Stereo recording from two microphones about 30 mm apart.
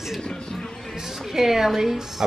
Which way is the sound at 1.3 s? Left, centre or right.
Centre.